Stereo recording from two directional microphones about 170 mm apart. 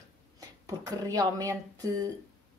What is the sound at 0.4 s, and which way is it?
Speech, 20° right (ahead or behind).